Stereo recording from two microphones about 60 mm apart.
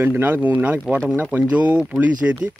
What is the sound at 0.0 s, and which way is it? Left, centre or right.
Speech, right.